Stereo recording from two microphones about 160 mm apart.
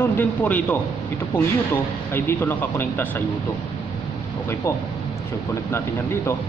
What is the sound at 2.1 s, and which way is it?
Speech, 10° left (ahead or behind).